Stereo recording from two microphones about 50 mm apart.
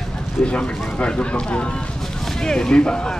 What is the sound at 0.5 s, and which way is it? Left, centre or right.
Speech, left.